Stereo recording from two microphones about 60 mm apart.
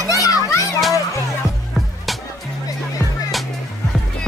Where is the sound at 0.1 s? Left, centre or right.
Left.